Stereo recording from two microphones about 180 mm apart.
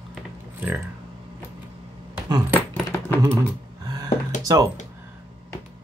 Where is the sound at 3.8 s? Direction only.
20° right (ahead or behind).